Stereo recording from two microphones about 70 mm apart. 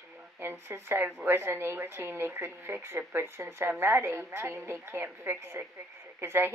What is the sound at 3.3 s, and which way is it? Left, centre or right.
Speech, right.